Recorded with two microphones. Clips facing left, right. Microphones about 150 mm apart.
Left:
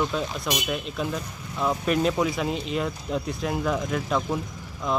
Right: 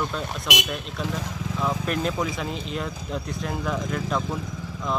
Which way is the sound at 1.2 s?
90° right.